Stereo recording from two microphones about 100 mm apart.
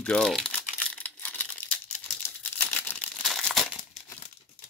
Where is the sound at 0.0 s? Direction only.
5° left (ahead or behind).